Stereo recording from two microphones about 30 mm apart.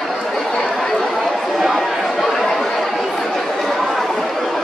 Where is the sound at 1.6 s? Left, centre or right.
Centre.